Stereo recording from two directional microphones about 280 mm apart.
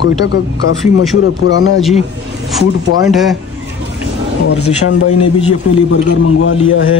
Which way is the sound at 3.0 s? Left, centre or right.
Centre.